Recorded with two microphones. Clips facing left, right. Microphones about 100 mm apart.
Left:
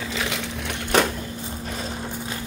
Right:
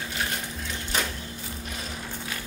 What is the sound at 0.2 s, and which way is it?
Crushing, 80° left.